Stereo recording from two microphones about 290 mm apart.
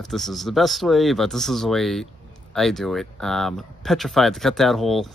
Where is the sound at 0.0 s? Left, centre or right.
Centre.